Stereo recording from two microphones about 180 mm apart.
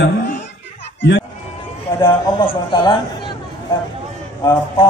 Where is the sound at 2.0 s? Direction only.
30° left (ahead or behind).